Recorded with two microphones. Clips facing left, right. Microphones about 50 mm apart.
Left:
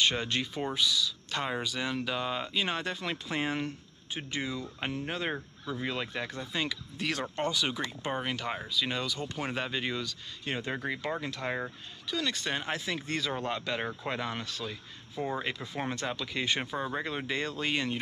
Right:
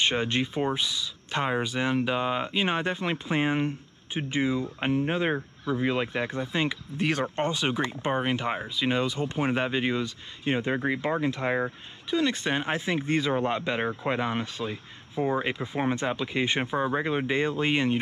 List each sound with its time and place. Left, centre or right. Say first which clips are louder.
0.0 s speech: right 4 dB; right